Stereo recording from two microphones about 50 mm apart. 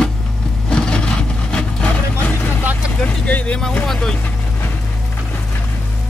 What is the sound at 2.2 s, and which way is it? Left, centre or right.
Vehicle, left.